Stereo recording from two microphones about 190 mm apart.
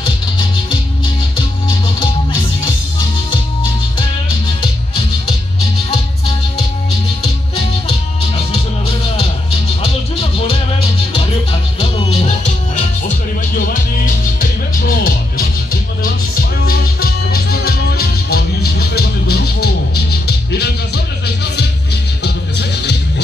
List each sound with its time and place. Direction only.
0.0 s music: 25° left (ahead or behind)
8.5 s music: 30° left (ahead or behind)
13.6 s music: 50° left (ahead or behind)
22.2 s music: 60° left (ahead or behind)